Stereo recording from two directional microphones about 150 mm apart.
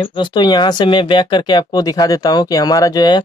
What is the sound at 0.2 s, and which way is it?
Speech, 30° left (ahead or behind).